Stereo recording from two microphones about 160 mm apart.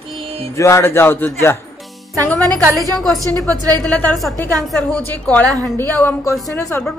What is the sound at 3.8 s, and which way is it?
A man's voice, 5° left (ahead or behind).